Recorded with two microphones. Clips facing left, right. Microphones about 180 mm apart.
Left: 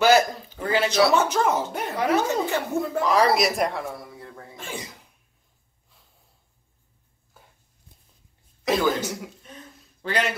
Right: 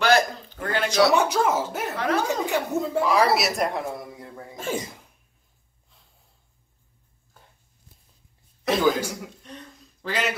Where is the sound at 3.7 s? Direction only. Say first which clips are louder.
Right 2 dB; 15° right (ahead or behind).